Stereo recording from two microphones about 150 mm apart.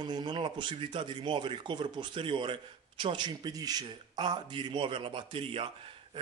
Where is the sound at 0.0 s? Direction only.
30° right (ahead or behind).